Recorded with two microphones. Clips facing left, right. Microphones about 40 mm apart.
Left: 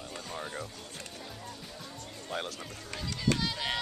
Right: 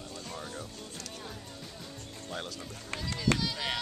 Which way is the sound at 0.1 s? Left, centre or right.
Left.